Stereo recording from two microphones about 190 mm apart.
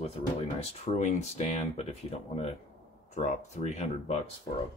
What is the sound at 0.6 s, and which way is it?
Speech, 35° left (ahead or behind).